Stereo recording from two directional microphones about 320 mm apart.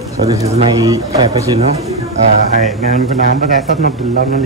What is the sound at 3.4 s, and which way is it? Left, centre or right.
Speech, right.